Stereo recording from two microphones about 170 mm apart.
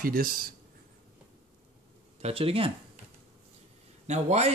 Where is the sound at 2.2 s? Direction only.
35° right (ahead or behind).